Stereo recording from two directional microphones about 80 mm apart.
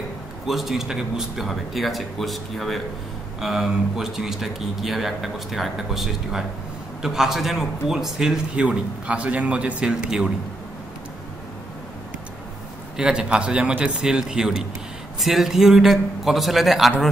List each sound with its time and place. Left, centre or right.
0.5 s a man's voice: centre
12.9 s a man's voice: centre